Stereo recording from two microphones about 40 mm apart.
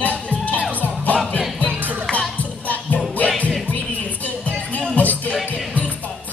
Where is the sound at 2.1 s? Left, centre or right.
Left.